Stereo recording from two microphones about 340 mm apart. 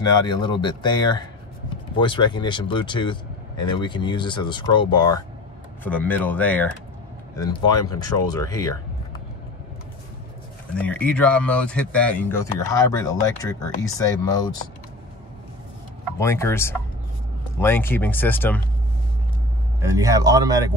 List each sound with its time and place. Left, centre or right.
0.0 s speech: centre
10.8 s speech: centre
16.2 s speech: centre
19.8 s speech: centre